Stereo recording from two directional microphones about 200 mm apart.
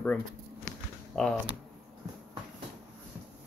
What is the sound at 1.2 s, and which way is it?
Speech, centre (ahead or behind).